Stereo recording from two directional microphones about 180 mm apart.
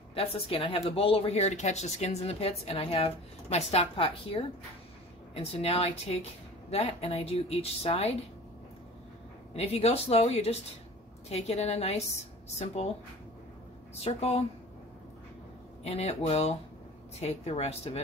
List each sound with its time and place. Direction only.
0.1 s a woman's voice: 30° left (ahead or behind)
9.5 s a woman's voice: 35° left (ahead or behind)
14.0 s a woman's voice: 35° left (ahead or behind)
15.8 s a woman's voice: 35° left (ahead or behind)